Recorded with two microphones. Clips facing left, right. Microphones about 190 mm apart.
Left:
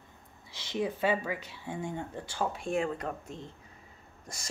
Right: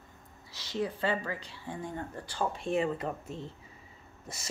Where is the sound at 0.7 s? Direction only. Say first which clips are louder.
Left 2 dB; 15° left (ahead or behind).